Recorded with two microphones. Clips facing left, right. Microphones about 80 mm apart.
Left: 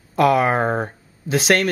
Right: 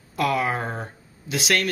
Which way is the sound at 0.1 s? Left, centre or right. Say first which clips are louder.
Left 7 dB; left.